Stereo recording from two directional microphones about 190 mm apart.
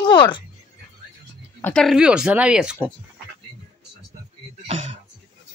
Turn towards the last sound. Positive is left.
turn(degrees=-35)  # may be behind; listen again after turning